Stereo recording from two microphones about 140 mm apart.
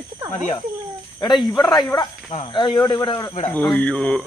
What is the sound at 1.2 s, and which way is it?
Speech, 30° left (ahead or behind).